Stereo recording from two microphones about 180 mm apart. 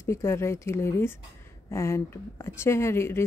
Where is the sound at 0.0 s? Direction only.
15° left (ahead or behind).